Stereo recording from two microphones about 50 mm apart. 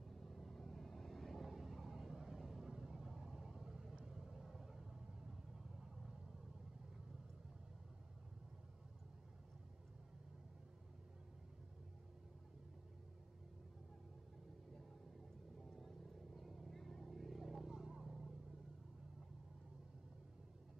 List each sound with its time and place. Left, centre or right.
0.1 s vehicle: centre
16.3 s vehicle: centre